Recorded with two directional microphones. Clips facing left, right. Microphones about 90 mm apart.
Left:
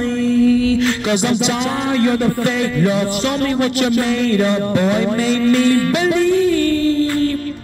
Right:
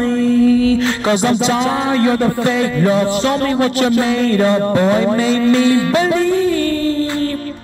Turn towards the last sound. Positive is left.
turn(degrees=-40)  # may be behind; listen again after turning